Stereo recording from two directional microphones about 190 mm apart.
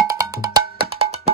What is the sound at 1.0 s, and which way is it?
Music, 30° right (ahead or behind).